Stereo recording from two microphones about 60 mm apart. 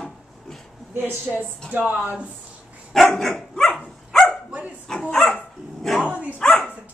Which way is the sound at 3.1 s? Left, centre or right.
Centre.